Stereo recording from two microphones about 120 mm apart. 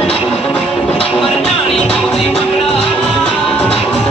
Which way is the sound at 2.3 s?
50° left (ahead or behind).